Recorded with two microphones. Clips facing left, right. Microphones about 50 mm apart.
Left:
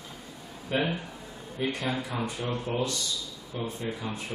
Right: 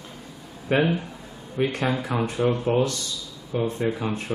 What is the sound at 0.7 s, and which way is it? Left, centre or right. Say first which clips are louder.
Speech: right 7 dB; right.